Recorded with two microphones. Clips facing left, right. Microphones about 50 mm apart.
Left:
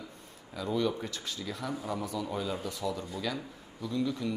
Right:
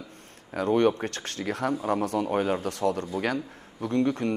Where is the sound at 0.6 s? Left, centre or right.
Right.